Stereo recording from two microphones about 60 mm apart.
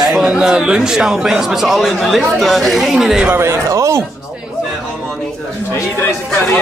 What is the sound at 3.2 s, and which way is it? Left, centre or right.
Speech, right.